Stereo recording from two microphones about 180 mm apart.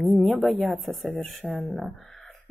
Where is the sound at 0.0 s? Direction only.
Centre (ahead or behind).